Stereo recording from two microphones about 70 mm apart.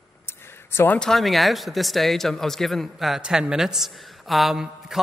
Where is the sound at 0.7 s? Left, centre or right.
Left.